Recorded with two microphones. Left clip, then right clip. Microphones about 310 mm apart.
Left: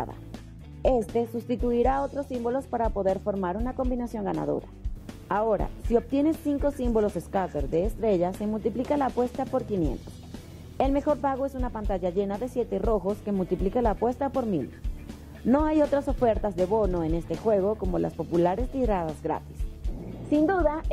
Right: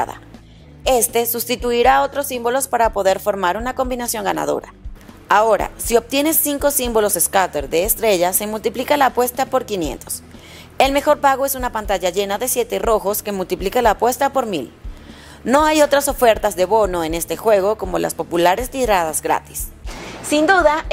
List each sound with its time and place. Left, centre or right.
0.8 s a woman's voice: centre
10.8 s a woman's voice: centre
12.9 s speech: centre
13.2 s a woman's voice: centre